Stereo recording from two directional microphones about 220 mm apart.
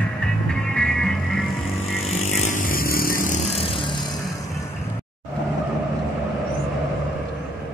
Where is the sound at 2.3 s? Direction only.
35° left (ahead or behind).